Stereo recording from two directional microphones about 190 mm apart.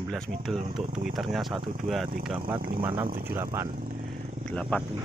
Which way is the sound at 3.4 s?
15° right (ahead or behind).